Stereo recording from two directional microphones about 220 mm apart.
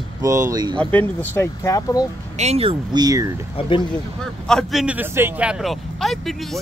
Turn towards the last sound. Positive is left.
turn(degrees=0)  # may be behind; listen again after turning